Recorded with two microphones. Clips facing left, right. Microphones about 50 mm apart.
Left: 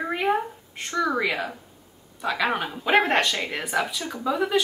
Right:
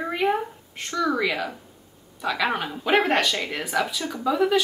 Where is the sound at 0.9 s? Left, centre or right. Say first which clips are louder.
Even; left.